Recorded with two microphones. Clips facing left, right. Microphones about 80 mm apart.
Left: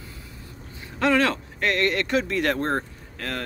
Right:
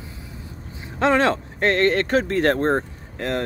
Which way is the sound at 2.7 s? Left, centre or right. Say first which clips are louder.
Right 5 dB; right.